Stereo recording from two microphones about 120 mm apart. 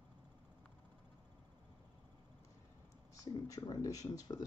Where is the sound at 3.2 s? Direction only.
30° left (ahead or behind).